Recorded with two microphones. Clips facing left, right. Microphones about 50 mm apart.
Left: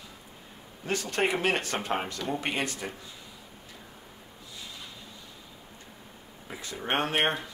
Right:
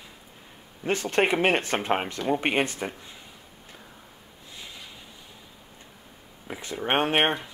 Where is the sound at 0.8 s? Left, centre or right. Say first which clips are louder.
Right 4 dB; right.